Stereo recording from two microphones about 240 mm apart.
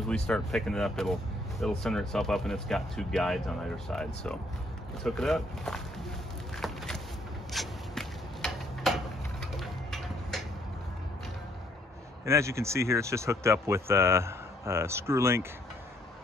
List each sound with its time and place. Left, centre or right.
0.1 s speech: centre
6.6 s a sound: centre
7.5 s zipper: centre
12.3 s speech: centre